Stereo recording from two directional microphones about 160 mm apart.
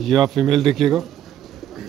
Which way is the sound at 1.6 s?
Centre (ahead or behind).